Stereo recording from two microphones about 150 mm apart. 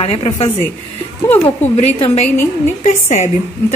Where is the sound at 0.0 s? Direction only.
40° left (ahead or behind).